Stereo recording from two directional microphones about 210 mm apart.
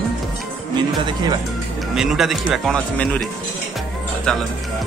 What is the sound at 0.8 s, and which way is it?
Music, 20° right (ahead or behind).